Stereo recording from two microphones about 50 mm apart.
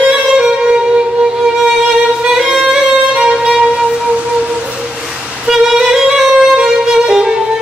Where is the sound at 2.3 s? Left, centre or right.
Centre.